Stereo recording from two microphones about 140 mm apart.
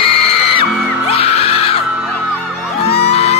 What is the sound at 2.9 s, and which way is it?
Music, 45° left (ahead or behind).